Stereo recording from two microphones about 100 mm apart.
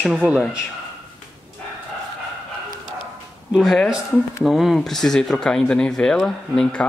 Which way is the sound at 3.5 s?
Centre (ahead or behind).